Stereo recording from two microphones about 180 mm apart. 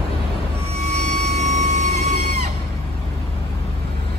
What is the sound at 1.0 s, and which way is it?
Vehicle, 40° right (ahead or behind).